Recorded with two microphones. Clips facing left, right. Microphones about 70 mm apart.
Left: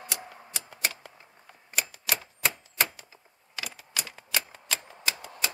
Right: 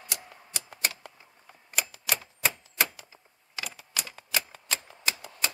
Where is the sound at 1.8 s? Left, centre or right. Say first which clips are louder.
Even; centre.